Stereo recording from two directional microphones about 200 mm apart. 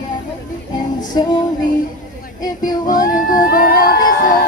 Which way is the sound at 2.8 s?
40° left (ahead or behind).